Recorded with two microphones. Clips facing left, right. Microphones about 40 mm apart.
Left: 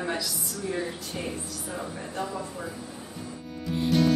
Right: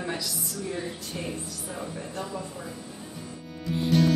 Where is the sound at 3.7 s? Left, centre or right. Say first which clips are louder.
Even; centre.